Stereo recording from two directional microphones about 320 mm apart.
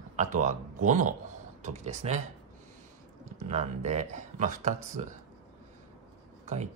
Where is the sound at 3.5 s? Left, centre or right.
Right.